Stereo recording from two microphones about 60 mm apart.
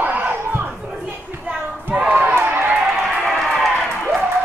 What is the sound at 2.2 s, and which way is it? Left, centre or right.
Crowd, right.